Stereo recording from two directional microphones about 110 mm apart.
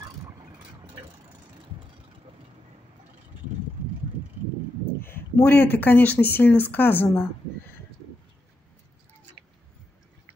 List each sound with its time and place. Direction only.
5.0 s speech: 20° left (ahead or behind)